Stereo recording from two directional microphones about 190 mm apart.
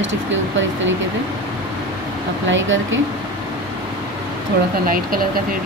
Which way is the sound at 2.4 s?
85° right.